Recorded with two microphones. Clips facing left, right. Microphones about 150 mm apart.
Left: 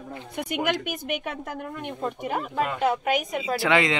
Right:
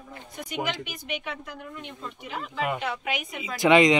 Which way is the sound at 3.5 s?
20° right (ahead or behind).